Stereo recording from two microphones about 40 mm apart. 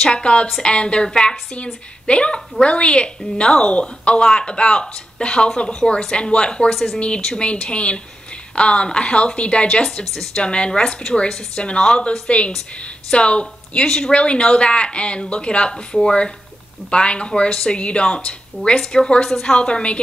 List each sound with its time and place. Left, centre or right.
0.1 s speech: left
6.7 s speech: centre
7.6 s speech: left
13.8 s speech: centre
14.1 s speech: left
15.7 s speech: centre